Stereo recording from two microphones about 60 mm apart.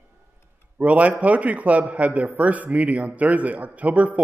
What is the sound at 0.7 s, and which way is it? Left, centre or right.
A man's voice, right.